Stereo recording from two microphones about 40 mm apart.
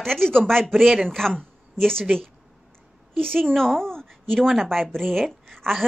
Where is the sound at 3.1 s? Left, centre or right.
Centre.